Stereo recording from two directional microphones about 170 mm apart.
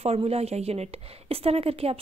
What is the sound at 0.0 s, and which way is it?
A woman's voice, 35° right (ahead or behind).